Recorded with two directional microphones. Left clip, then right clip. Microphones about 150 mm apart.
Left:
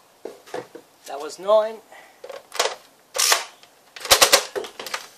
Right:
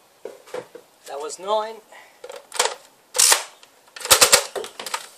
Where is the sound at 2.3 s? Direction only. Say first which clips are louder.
Right 1 dB; centre (ahead or behind).